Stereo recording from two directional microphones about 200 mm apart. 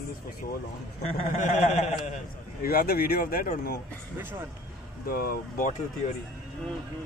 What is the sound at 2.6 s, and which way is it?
Speech, 50° left (ahead or behind).